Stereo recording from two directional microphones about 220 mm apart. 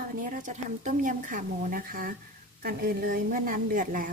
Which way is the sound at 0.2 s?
35° right (ahead or behind).